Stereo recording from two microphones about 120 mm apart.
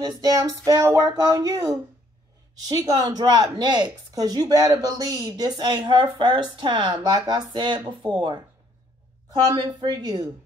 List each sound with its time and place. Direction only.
0.0 s speech: 35° right (ahead or behind)